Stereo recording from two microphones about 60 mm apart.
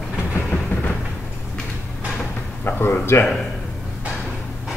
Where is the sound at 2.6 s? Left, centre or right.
Left.